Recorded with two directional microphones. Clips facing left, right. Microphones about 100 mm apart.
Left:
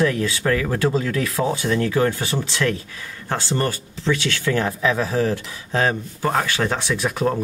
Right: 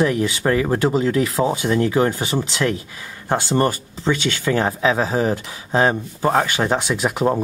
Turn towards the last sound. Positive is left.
turn(degrees=-20)  # may be behind; listen again after turning